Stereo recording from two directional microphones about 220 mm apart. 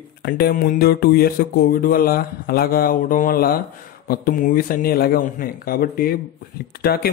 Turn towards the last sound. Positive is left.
turn(degrees=45)  # may be behind; listen again after turning